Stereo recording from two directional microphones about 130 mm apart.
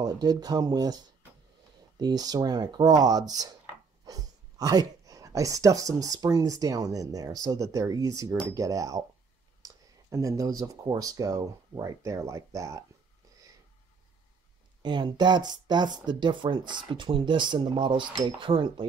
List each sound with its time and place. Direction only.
0.0 s speech: 30° right (ahead or behind)
14.8 s speech: 35° right (ahead or behind)